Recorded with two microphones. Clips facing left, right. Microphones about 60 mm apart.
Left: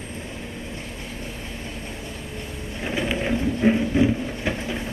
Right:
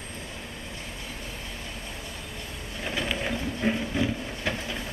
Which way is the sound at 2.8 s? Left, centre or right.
Centre.